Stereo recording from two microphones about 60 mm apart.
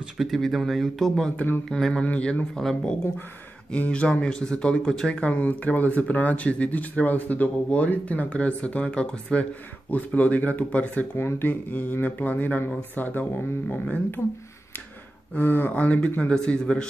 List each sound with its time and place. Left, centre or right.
0.2 s speech: centre
1.3 s speech: left
1.7 s speech: centre
2.0 s speech: left
2.5 s speech: centre
5.2 s speech: left
11.1 s speech: left
15.3 s speech: left; by 16.8 s centre